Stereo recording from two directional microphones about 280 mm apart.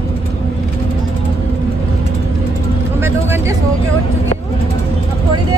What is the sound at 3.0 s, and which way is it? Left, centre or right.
Vehicle, centre.